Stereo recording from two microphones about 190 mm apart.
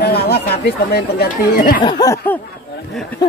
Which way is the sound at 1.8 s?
20° left (ahead or behind).